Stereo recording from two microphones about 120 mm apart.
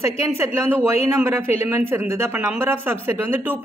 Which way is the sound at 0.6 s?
20° right (ahead or behind).